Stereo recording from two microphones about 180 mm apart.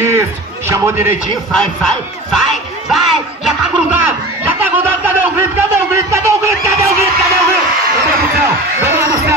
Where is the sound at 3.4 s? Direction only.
10° right (ahead or behind).